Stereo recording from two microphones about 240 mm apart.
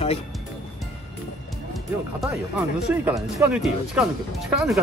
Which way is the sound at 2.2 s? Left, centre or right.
Centre.